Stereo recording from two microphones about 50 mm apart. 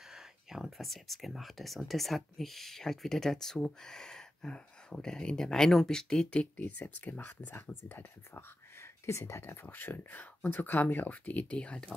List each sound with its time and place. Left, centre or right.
0.1 s speech: centre
6.3 s speech: left
9.0 s speech: left
9.7 s speech: left